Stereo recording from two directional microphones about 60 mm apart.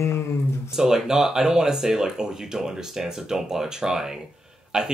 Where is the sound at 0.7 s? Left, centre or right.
Centre.